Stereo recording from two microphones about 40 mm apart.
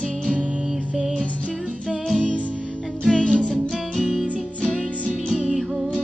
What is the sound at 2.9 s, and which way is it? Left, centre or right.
Music, centre.